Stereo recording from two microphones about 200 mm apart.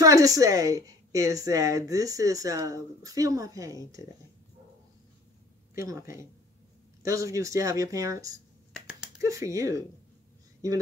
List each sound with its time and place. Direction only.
0.0 s a woman's voice: 15° right (ahead or behind)
5.8 s a woman's voice: 15° right (ahead or behind)
8.7 s a sound: 5° right (ahead or behind)
9.2 s a woman's voice: 15° right (ahead or behind)